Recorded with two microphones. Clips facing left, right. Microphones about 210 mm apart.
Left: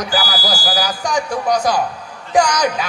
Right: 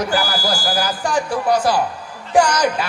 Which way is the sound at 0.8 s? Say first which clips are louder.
Even; 5° right (ahead or behind).